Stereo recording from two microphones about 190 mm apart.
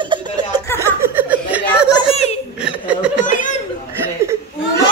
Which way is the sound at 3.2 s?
45° left (ahead or behind).